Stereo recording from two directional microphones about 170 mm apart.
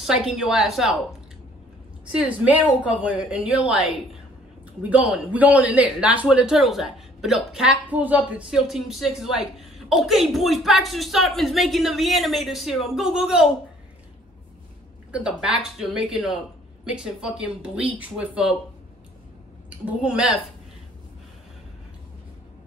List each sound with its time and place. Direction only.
0.0 s a man's voice: centre (ahead or behind)
2.1 s a woman's voice: 10° right (ahead or behind)
15.0 s a man's voice: 5° right (ahead or behind)
19.7 s a man's voice: 5° right (ahead or behind)